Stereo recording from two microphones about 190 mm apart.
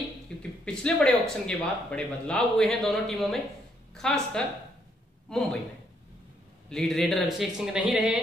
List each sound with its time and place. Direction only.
0.4 s speech: 5° left (ahead or behind)
6.7 s speech: centre (ahead or behind)